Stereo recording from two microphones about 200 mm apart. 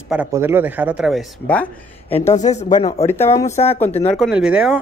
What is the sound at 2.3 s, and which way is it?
Speech, 35° left (ahead or behind).